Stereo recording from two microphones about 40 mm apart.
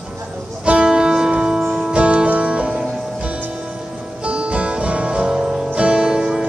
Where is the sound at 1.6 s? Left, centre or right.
Centre.